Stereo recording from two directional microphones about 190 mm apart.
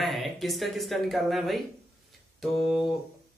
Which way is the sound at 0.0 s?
Centre (ahead or behind).